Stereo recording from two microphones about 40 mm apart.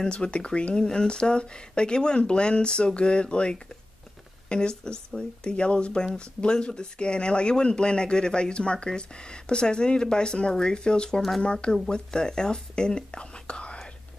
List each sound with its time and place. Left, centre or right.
0.0 s speech: left